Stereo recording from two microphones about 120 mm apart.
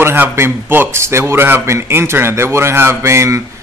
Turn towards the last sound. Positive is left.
turn(degrees=-25)  # may be behind; listen again after turning